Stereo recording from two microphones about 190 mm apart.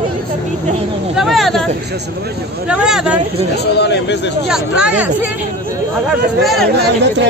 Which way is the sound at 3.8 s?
65° left (ahead or behind).